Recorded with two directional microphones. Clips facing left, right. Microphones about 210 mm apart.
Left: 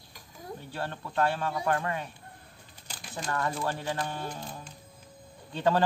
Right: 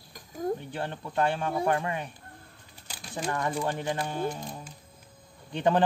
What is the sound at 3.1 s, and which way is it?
A man's voice, 15° right (ahead or behind).